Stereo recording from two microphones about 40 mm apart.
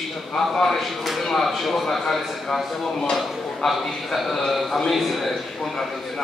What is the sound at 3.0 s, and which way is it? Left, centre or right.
Speech, centre.